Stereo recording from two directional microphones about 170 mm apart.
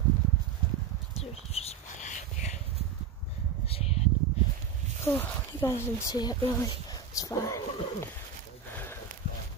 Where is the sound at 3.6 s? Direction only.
35° left (ahead or behind).